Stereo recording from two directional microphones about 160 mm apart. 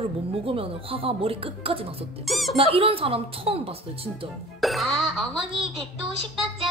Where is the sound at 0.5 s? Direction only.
35° right (ahead or behind).